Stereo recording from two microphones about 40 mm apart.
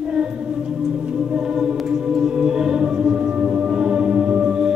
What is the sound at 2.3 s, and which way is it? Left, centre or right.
Music, centre.